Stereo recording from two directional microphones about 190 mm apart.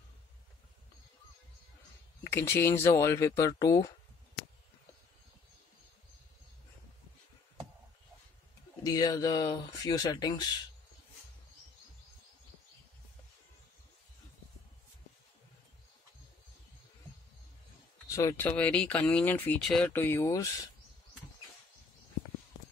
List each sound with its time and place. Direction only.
2.2 s speech: 15° left (ahead or behind)
8.8 s speech: 20° left (ahead or behind)
18.0 s speech: 15° left (ahead or behind)